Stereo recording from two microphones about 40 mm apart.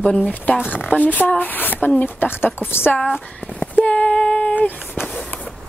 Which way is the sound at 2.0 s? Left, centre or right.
Left.